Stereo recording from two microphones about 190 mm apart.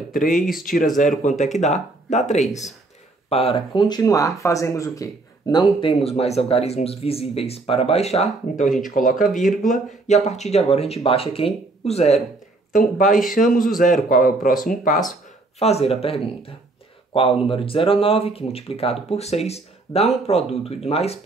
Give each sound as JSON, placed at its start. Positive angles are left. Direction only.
{"t": 0.3, "sound": "speech", "side_deg": 0}
{"t": 0.9, "sound": "speech", "side_deg": 40}
{"t": 15.6, "sound": "speech", "side_deg": 30}